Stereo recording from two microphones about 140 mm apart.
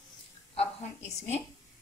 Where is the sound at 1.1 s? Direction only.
55° left (ahead or behind).